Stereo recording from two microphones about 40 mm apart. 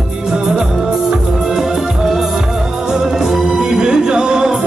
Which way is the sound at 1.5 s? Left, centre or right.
Centre.